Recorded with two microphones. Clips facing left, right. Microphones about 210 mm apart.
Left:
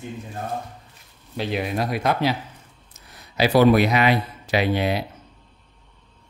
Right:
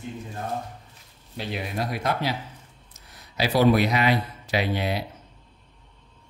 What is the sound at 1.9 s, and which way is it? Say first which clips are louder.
Speech: left 4 dB; 80° left.